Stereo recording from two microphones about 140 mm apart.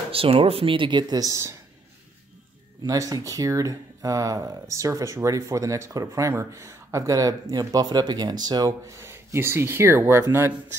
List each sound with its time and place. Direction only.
0.1 s speech: 40° right (ahead or behind); by 1.5 s 25° right (ahead or behind)
2.8 s speech: 25° right (ahead or behind)